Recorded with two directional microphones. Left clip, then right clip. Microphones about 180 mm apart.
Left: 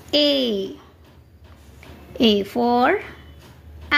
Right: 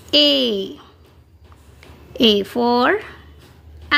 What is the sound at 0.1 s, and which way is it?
Speech, 15° right (ahead or behind).